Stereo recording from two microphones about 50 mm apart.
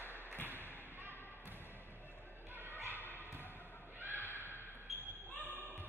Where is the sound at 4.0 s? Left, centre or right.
Right.